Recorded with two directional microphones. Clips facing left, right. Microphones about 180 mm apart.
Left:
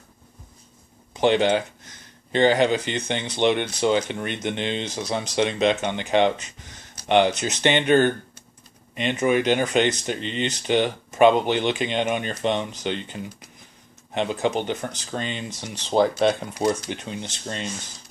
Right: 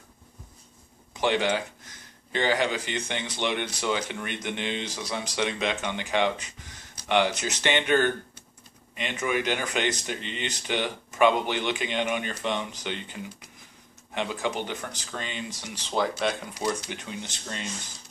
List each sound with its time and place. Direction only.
1.2 s speech: 25° left (ahead or behind)
9.3 s speech: 25° left (ahead or behind)
15.9 s speech: 35° left (ahead or behind)